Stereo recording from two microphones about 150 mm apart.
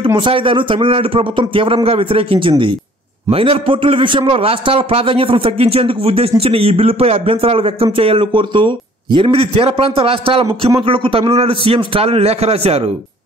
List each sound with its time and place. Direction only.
0.0 s a man's voice: 35° right (ahead or behind)